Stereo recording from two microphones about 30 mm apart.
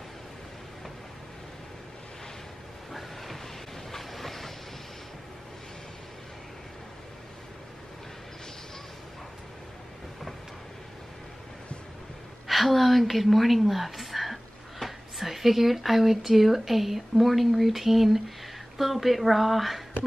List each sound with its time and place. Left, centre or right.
2.9 s train: centre
3.9 s vehicle: centre
12.4 s a woman's voice: centre